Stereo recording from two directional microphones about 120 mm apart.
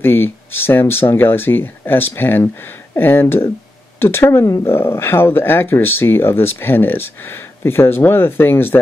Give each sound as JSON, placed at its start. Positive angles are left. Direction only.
{"t": 0.0, "sound": "speech", "side_deg": 20}